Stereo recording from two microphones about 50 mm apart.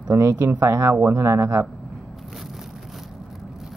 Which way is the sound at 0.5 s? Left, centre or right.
Right.